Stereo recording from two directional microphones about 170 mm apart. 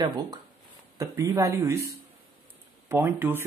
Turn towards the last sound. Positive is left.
turn(degrees=-10)  # may be behind; listen again after turning